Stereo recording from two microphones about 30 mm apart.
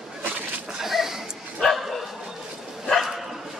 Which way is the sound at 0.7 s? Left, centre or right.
Centre.